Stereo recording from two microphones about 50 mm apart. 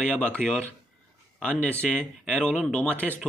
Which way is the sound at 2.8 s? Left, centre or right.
Left.